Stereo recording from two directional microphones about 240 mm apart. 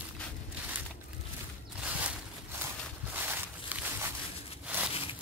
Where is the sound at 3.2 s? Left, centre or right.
Centre.